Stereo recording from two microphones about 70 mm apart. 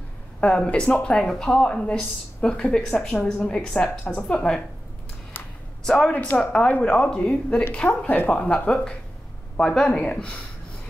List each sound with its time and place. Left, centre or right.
0.4 s speech: centre
5.9 s speech: centre